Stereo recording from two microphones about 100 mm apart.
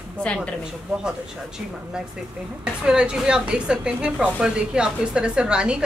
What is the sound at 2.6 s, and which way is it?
A woman's voice, 10° right (ahead or behind).